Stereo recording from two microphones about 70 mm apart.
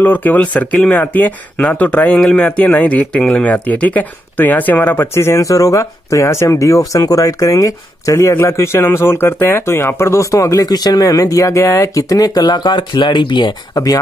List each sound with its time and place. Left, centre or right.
0.0 s speech: left
5.4 s speech: left
8.4 s speech: left